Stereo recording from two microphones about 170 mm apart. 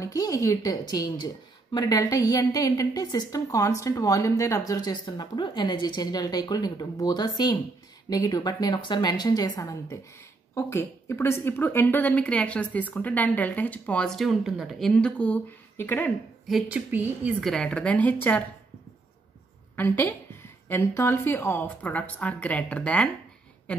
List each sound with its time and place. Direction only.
0.0 s a woman's voice: 20° left (ahead or behind)
16.4 s speech: 5° right (ahead or behind)
19.7 s a woman's voice: 10° left (ahead or behind)